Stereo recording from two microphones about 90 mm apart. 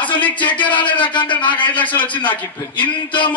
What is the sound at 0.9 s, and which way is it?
Speech, 65° left (ahead or behind).